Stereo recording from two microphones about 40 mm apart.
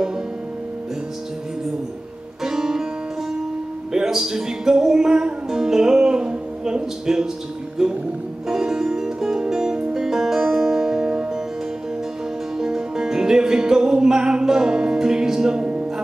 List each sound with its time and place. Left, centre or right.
2.4 s music: centre
3.9 s music: centre
12.5 s music: centre
15.6 s music: right